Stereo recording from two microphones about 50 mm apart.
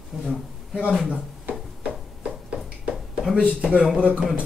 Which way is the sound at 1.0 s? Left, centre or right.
Right.